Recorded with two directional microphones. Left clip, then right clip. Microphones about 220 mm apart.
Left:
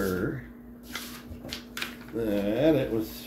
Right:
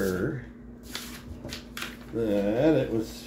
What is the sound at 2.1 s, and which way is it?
Mantra, centre (ahead or behind).